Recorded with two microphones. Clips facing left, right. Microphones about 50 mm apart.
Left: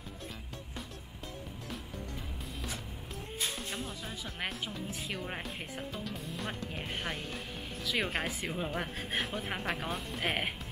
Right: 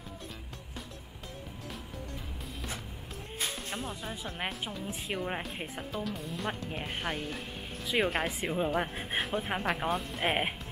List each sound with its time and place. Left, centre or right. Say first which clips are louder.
4.0 s speech: right 3 dB; right
4.4 s speech: even; centre
5.9 s speech: right 4 dB; centre
10.2 s speech: right 3 dB; centre